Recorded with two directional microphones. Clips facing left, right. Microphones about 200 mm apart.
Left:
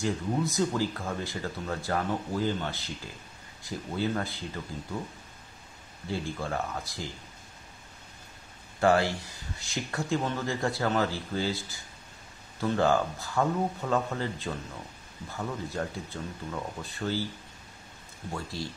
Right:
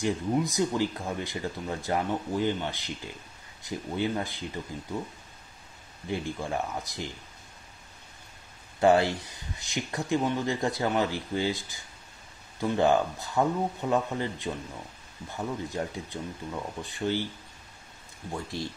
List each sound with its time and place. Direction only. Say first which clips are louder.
0.0 s speech: right 2 dB; 15° right (ahead or behind)
6.0 s speech: right 1 dB; 20° right (ahead or behind)
8.7 s speech: right 2 dB; 20° right (ahead or behind)
18.3 s speech: right 2 dB; 20° right (ahead or behind)